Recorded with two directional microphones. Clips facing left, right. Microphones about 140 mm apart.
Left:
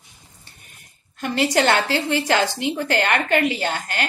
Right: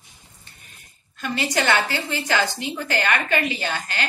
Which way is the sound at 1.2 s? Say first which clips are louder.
Left 5 dB; 55° left (ahead or behind).